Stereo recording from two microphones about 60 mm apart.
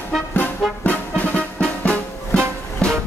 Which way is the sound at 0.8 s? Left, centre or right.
Left.